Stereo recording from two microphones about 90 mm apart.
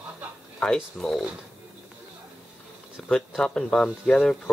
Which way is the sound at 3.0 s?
5° left (ahead or behind).